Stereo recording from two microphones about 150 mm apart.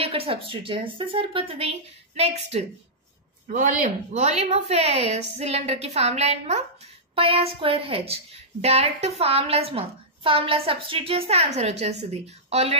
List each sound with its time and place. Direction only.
0.0 s a woman's voice: 40° right (ahead or behind)
3.4 s a woman's voice: 60° right (ahead or behind)